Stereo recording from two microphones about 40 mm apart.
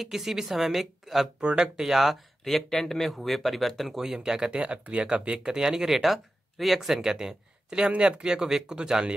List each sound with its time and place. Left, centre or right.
0.0 s a woman's voice: centre
1.4 s speech: right
1.9 s speech: centre
4.0 s a woman's voice: centre
5.9 s a woman's voice: centre